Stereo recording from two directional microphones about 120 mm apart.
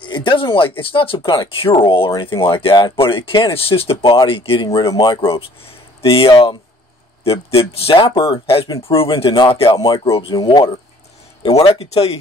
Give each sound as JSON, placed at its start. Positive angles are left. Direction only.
{"t": 0.0, "sound": "speech", "side_deg": 40}
{"t": 11.4, "sound": "speech", "side_deg": 50}